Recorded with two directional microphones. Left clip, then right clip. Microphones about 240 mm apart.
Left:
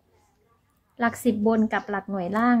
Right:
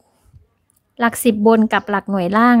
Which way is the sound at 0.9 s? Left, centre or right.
Right.